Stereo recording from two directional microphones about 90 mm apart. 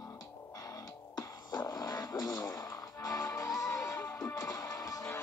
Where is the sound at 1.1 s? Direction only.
45° left (ahead or behind).